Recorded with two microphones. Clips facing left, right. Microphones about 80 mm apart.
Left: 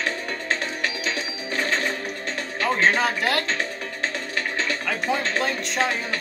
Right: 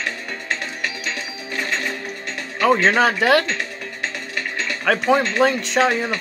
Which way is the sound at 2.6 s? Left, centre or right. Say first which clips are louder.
Right 5 dB; right.